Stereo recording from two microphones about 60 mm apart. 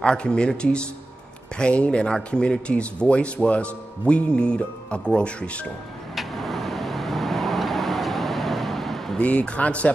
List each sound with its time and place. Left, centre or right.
0.0 s speech: centre
6.1 s vehicle: centre
9.2 s speech: left